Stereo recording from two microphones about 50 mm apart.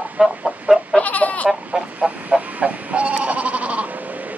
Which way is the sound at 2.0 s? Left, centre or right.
Right.